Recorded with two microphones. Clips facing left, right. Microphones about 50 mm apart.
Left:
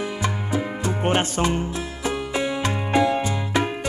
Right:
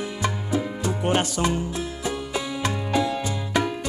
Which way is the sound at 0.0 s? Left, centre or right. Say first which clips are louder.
Left 1 dB; left.